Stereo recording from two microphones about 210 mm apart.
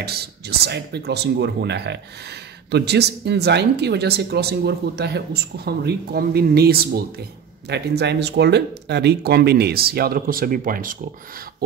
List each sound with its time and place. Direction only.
0.0 s speech: 50° right (ahead or behind)